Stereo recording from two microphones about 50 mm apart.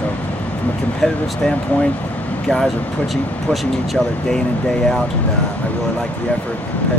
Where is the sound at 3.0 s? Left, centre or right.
Centre.